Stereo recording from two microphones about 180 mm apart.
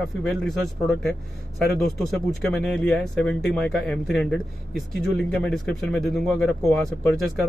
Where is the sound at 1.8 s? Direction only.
Centre (ahead or behind).